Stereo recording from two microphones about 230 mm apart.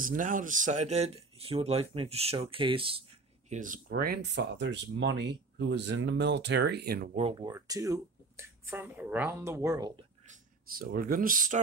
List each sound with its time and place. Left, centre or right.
0.0 s speech: right
3.4 s speech: right
7.2 s speech: right
10.2 s speech: right